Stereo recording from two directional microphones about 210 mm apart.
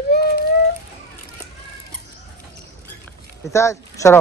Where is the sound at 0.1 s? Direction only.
50° left (ahead or behind).